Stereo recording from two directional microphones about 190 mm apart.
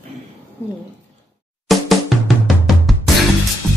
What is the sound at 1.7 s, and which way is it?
Drum, centre (ahead or behind).